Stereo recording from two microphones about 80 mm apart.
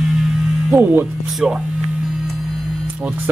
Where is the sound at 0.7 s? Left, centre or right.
Right.